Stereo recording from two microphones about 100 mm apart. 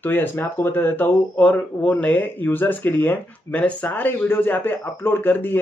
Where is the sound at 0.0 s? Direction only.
20° left (ahead or behind).